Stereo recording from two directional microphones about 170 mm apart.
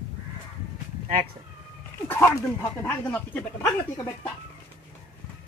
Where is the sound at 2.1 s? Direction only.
15° left (ahead or behind).